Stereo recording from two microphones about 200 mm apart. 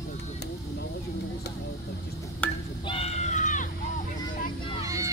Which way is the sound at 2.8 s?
30° left (ahead or behind).